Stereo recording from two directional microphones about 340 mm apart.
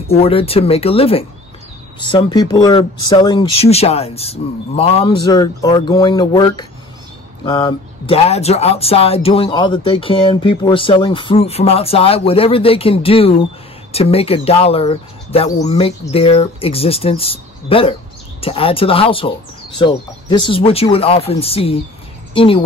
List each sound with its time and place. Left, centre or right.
0.1 s speech: centre